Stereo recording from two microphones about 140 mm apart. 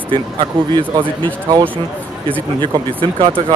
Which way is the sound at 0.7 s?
30° right (ahead or behind).